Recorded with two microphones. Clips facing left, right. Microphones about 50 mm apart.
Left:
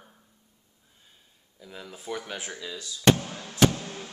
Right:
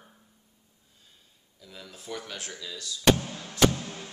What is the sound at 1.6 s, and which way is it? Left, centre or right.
Speech, centre.